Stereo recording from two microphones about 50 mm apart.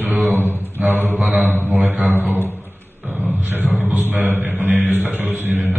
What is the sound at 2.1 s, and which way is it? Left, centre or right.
Speech, right.